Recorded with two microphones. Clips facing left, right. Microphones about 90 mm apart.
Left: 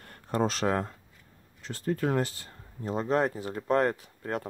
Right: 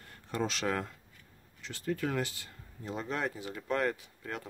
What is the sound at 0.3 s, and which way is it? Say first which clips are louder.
Speech: left 6 dB; 40° left (ahead or behind).